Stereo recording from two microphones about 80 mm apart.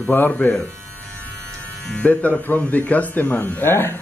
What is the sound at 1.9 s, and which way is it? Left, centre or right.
Speech, centre.